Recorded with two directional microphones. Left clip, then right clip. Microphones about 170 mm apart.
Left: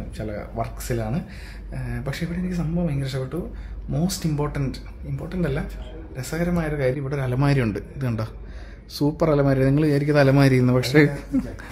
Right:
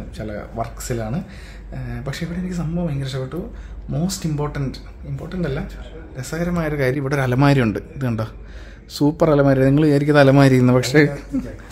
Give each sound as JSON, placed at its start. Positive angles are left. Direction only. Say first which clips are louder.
{"t": 0.2, "sound": "speech", "louder": "right 2 dB", "side_deg": 0}
{"t": 6.8, "sound": "a man's voice", "louder": "right 6 dB", "side_deg": -55}
{"t": 7.3, "sound": "speech", "louder": "right 5 dB", "side_deg": -30}
{"t": 10.9, "sound": "speech", "louder": "right 2 dB", "side_deg": -5}